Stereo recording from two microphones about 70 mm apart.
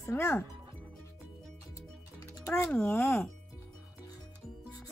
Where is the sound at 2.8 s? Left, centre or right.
Left.